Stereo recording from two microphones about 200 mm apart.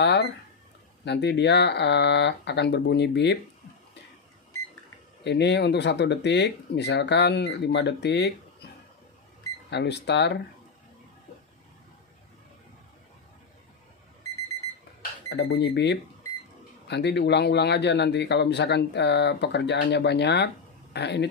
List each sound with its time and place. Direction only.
0.0 s a man's voice: 55° left (ahead or behind)
5.2 s a man's voice: 60° left (ahead or behind)
9.7 s a man's voice: 60° left (ahead or behind)
15.0 s a man's voice: 55° left (ahead or behind)